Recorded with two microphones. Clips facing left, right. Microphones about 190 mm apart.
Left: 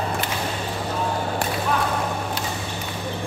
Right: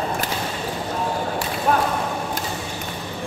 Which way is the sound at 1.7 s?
50° right (ahead or behind).